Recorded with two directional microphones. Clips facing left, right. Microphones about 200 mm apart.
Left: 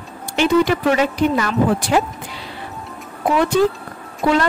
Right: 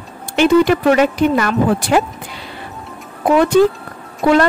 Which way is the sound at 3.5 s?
60° right (ahead or behind).